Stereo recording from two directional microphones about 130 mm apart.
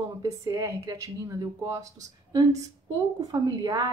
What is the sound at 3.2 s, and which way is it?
Speech, 30° right (ahead or behind).